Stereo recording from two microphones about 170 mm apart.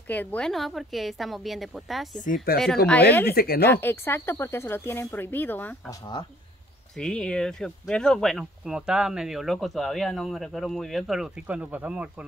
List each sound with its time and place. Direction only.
0.1 s speech: 10° left (ahead or behind)
2.1 s speech: 50° left (ahead or behind)
2.9 s speech: 10° left (ahead or behind)
3.3 s speech: 60° left (ahead or behind)
3.6 s speech: 10° left (ahead or behind)
7.0 s speech: 5° left (ahead or behind)